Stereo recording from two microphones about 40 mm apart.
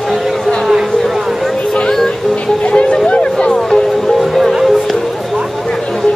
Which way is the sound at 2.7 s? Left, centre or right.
Left.